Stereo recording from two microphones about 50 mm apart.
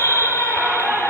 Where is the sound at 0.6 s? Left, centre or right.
Right.